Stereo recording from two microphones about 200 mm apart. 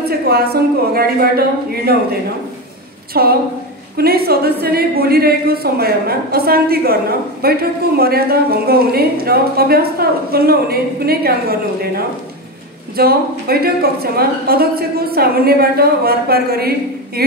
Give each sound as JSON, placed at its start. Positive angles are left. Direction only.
{"t": 0.3, "sound": "a woman's voice", "side_deg": -50}
{"t": 3.1, "sound": "a woman's voice", "side_deg": -50}